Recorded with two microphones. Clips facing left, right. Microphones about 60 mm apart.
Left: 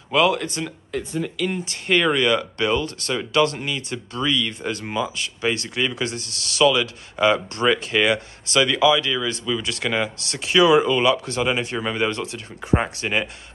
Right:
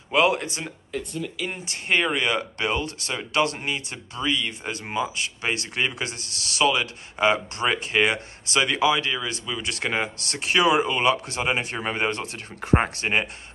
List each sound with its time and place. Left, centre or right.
0.1 s speech: right
0.9 s speech: centre
1.6 s speech: right